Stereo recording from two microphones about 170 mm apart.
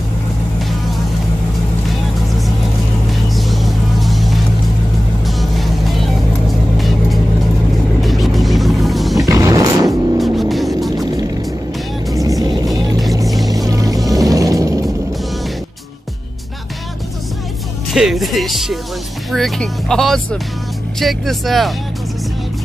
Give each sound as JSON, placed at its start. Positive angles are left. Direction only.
{"t": 3.3, "sound": "vehicle", "side_deg": 0}
{"t": 5.2, "sound": "music", "side_deg": 0}
{"t": 8.0, "sound": "music", "side_deg": 0}
{"t": 9.2, "sound": "music", "side_deg": -20}
{"t": 10.1, "sound": "music", "side_deg": 0}
{"t": 11.1, "sound": "music", "side_deg": -20}
{"t": 12.1, "sound": "vehicle", "side_deg": -20}
{"t": 13.5, "sound": "music", "side_deg": -20}
{"t": 17.9, "sound": "speech", "side_deg": 0}